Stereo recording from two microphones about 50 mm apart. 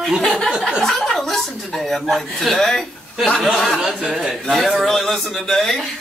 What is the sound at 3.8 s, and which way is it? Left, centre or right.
Speech, centre.